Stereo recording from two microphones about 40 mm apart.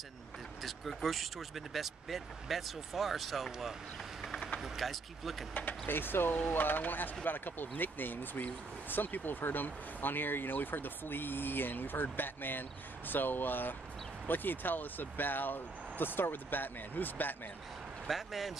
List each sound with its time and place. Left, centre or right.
0.6 s speech: centre
4.6 s speech: centre
5.5 s speech: left
18.0 s speech: centre